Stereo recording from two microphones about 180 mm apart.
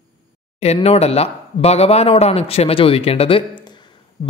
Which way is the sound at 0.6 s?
35° left (ahead or behind).